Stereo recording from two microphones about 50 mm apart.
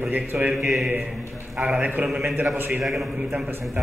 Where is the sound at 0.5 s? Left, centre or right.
Centre.